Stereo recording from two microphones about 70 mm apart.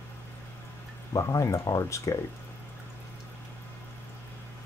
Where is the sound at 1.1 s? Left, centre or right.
Left.